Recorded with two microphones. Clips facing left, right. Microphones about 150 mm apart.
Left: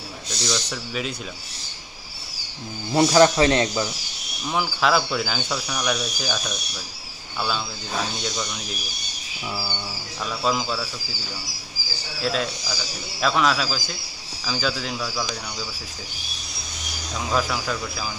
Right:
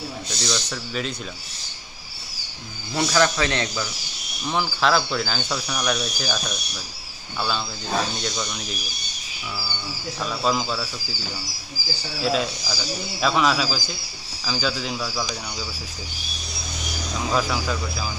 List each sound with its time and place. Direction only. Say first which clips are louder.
0.4 s speech: left 2 dB; 5° left (ahead or behind)
2.9 s speech: left 5 dB; 30° left (ahead or behind)
4.6 s speech: even; 5° left (ahead or behind)
10.2 s speech: right 1 dB; centre (ahead or behind)
12.2 s speech: right 2 dB; 5° right (ahead or behind)
17.3 s speech: even; centre (ahead or behind)